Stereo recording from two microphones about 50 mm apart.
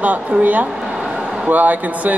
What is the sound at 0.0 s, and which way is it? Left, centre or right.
A woman's voice, right.